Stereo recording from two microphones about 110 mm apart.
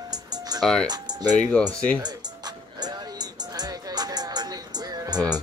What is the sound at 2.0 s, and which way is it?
Music, 40° right (ahead or behind).